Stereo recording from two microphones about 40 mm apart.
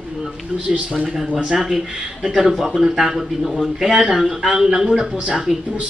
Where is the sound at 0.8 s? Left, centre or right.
Centre.